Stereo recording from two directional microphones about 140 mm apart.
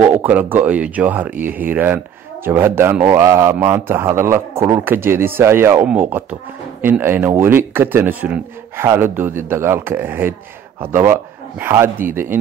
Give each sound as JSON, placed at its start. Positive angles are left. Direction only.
{"t": 0.0, "sound": "speech", "side_deg": -15}